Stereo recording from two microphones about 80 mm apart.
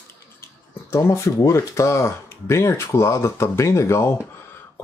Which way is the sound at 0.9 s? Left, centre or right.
Left.